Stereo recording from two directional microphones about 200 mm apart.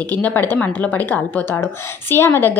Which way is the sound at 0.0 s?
10° left (ahead or behind).